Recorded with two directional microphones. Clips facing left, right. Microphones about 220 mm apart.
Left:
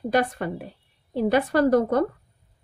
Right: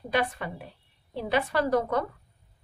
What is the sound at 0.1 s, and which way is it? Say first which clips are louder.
A woman's voice: left 4 dB; 40° left (ahead or behind).